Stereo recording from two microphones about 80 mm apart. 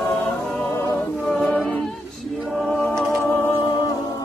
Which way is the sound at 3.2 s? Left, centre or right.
Left.